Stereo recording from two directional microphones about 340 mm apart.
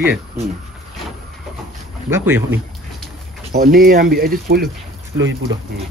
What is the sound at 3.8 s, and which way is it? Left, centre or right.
Speech, right.